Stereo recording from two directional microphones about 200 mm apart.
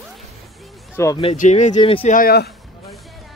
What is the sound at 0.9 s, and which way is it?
Speech, 15° left (ahead or behind).